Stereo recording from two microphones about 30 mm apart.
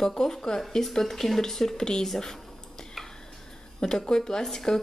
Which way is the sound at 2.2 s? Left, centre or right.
Centre.